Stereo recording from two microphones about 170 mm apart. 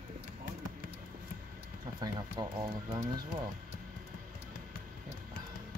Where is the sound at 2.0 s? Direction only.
20° right (ahead or behind).